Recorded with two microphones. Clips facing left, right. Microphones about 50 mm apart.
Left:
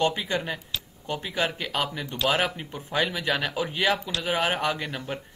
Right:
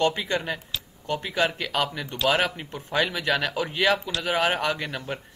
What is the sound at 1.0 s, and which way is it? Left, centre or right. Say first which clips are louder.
Speech: right 3 dB; centre.